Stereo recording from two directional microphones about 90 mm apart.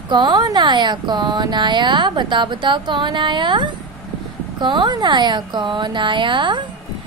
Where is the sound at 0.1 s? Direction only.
50° right (ahead or behind).